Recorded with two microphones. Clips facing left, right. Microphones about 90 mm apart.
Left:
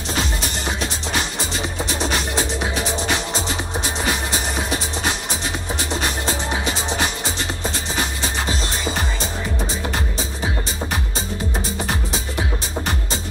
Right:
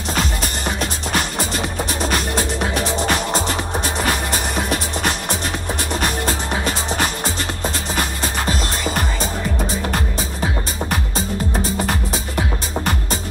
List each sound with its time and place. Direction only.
0.1 s music: 45° right (ahead or behind)
10.4 s music: 45° right (ahead or behind)